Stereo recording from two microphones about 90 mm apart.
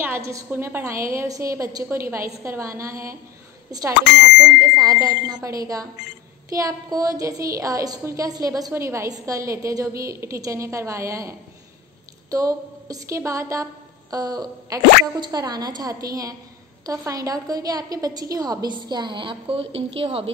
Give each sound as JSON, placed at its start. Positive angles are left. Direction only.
{"t": 0.0, "sound": "a sound", "side_deg": -25}
{"t": 0.5, "sound": "a woman's voice", "side_deg": -25}
{"t": 1.9, "sound": "a woman's voice", "side_deg": -25}
{"t": 4.7, "sound": "a woman's voice", "side_deg": -45}
{"t": 8.7, "sound": "a woman's voice", "side_deg": -30}